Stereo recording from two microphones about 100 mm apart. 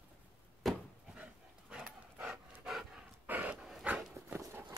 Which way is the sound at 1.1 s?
10° right (ahead or behind).